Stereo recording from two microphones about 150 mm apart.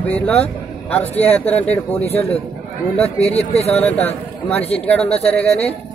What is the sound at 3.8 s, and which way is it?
Speech, 10° left (ahead or behind).